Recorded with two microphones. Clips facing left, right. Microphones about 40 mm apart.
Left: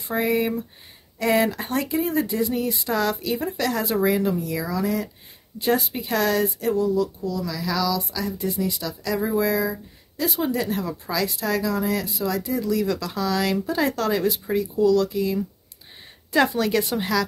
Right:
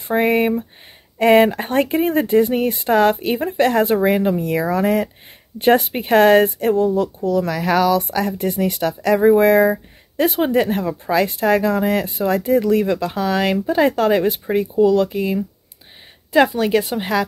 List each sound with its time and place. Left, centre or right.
0.1 s speech: right
12.8 s speech: right
16.3 s speech: centre